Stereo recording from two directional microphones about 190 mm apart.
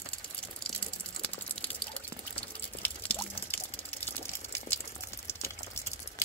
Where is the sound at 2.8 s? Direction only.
10° left (ahead or behind).